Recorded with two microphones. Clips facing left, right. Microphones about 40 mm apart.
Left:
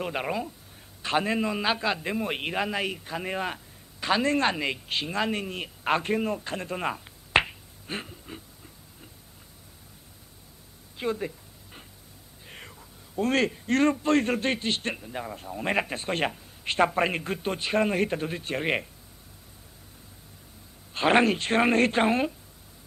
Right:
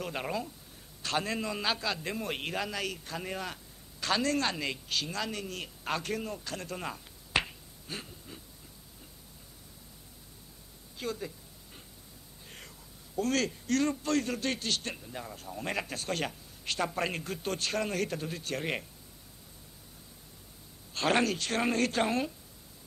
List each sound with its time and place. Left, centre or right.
0.0 s a man's voice: left
11.0 s a sound: left
12.4 s a man's voice: left
20.9 s a man's voice: left